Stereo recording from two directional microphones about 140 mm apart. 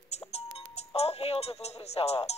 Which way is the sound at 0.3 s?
45° left (ahead or behind).